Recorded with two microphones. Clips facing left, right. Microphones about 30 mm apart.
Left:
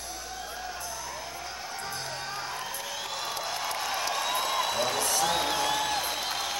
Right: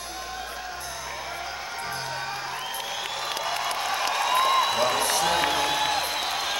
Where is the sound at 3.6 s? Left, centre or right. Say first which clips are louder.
Right 3 dB; right.